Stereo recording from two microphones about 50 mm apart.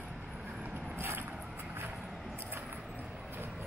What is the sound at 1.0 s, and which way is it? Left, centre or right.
Vehicle, right.